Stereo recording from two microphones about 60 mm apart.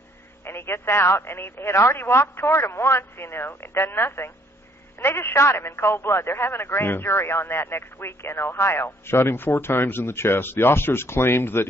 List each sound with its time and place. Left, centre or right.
0.5 s speech: left